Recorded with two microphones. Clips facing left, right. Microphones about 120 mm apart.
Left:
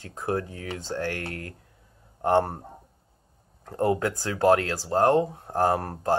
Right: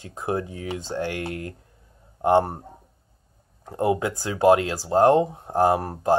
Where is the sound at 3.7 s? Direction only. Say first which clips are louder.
Right 1 dB; 15° right (ahead or behind).